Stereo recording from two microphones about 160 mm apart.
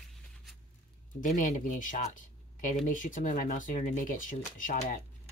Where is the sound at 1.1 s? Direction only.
55° left (ahead or behind).